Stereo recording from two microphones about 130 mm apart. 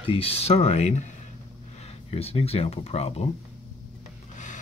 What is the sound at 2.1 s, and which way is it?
Speech, 50° left (ahead or behind).